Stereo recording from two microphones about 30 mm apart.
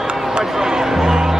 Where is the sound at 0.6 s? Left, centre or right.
Centre.